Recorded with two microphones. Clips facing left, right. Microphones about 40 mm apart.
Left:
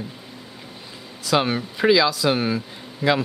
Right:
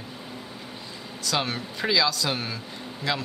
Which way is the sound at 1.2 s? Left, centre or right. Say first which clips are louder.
Left 7 dB; centre.